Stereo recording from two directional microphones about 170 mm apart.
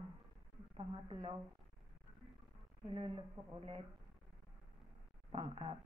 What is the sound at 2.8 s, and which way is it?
Speech, 30° right (ahead or behind).